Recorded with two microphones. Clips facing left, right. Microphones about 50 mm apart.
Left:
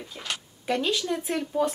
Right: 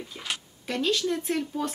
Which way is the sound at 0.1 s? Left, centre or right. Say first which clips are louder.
Left 1 dB; centre.